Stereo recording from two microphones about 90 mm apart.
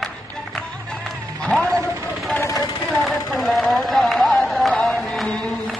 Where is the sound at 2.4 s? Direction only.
40° left (ahead or behind).